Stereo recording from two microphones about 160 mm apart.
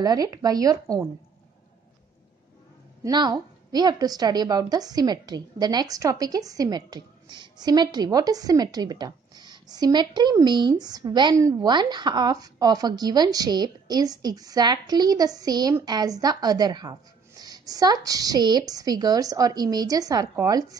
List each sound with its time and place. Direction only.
0.0 s a woman's voice: 25° right (ahead or behind)
3.0 s a woman's voice: 25° right (ahead or behind)